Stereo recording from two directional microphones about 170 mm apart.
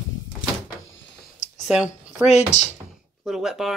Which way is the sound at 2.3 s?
40° left (ahead or behind).